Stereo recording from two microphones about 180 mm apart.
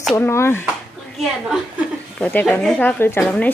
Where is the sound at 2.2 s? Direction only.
10° left (ahead or behind).